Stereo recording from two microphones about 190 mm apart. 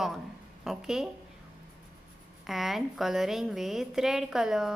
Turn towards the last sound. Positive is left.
turn(degrees=0)  # may be behind; listen again after turning